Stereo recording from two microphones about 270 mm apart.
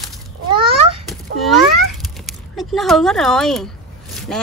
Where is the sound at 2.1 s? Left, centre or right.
Centre.